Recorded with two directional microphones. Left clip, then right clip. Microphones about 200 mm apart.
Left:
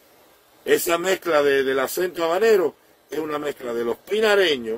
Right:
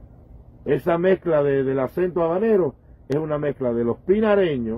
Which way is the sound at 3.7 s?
15° left (ahead or behind).